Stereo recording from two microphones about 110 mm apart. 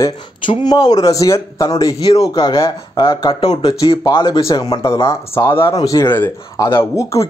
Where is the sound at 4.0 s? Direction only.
45° left (ahead or behind).